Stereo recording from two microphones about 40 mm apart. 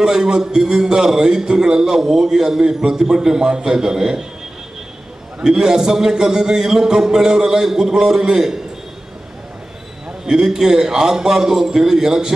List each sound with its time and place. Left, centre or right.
0.0 s a man's voice: centre
5.4 s a man's voice: centre
10.2 s a man's voice: centre